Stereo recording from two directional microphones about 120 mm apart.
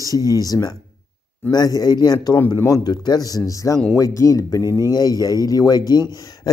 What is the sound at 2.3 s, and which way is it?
Speech, 25° left (ahead or behind).